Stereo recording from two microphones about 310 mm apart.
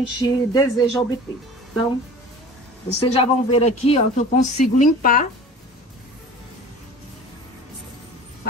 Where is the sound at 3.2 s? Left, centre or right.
Centre.